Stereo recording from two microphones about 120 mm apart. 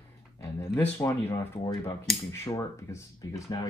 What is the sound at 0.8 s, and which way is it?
Speech, 20° left (ahead or behind).